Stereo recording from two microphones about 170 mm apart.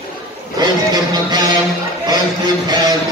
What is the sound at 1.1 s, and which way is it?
Music, 25° right (ahead or behind).